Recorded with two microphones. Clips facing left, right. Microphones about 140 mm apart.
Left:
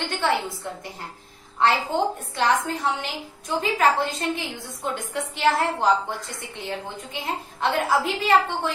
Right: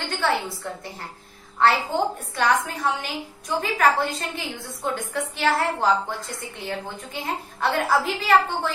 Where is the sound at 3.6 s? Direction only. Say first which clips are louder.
Even; 25° left (ahead or behind).